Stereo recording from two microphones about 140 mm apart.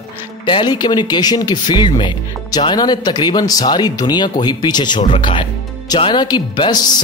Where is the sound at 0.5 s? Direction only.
35° left (ahead or behind).